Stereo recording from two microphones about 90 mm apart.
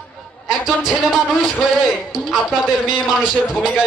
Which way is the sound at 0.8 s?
5° right (ahead or behind).